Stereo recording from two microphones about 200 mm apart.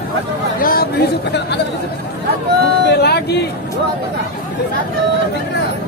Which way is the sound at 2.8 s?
55° left (ahead or behind).